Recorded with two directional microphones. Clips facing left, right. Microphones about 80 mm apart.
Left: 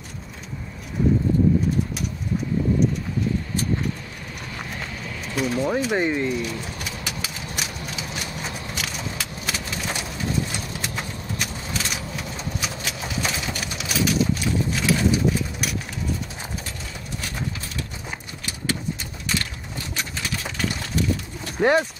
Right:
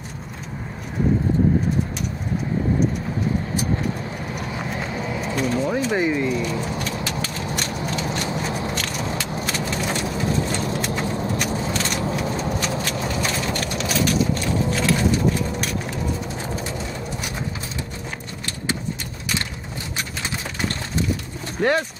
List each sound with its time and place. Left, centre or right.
4.6 s clip-clop: centre
5.2 s speech: centre
6.8 s vehicle: centre
11.7 s vehicle: centre
21.5 s speech: centre